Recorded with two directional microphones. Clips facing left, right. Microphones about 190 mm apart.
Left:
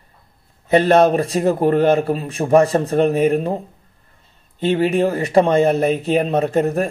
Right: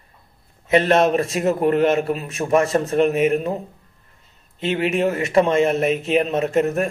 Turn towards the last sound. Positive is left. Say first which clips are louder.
# left 2 dB
turn(degrees=35)  # may be behind; listen again after turning